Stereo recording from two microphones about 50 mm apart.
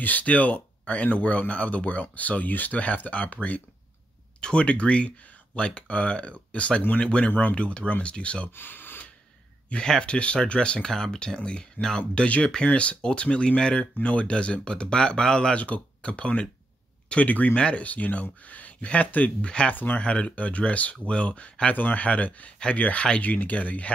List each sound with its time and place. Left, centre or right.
0.0 s speech: left
4.4 s speech: centre
8.5 s speech: left
9.7 s speech: centre
15.5 s speech: left
20.0 s speech: left